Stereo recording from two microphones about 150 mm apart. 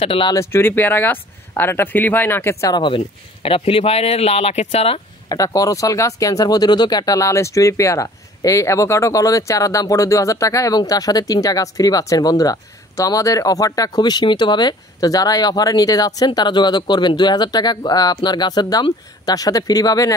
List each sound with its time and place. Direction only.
0.0 s speech: 35° left (ahead or behind)
0.3 s speech: 20° left (ahead or behind)
3.4 s speech: 40° left (ahead or behind)
5.3 s speech: 25° left (ahead or behind)